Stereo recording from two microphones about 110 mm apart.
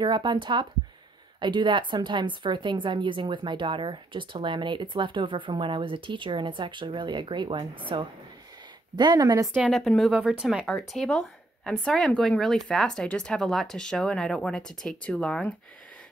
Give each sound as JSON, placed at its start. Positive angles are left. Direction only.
{"t": 0.0, "sound": "a woman's voice", "side_deg": -45}
{"t": 9.7, "sound": "speech", "side_deg": 0}
{"t": 10.7, "sound": "speech", "side_deg": 5}